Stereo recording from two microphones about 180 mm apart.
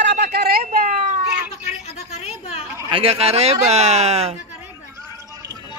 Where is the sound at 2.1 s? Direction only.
35° left (ahead or behind).